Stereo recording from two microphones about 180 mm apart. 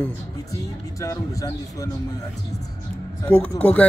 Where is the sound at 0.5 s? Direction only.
20° left (ahead or behind).